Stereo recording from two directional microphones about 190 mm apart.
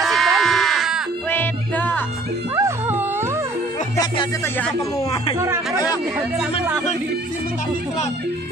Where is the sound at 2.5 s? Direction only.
15° right (ahead or behind).